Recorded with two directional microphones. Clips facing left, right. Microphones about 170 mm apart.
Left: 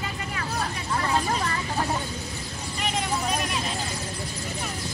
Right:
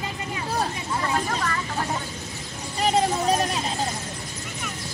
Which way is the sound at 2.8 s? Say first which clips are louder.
Right 7 dB; 35° right (ahead or behind).